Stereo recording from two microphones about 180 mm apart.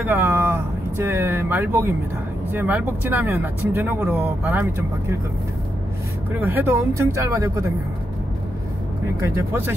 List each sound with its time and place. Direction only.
0.0 s vehicle: 10° right (ahead or behind)
2.5 s speech: 10° right (ahead or behind)
6.4 s speech: 10° right (ahead or behind)
9.2 s speech: 15° right (ahead or behind)